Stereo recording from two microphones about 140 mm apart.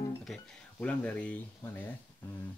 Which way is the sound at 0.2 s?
5° left (ahead or behind).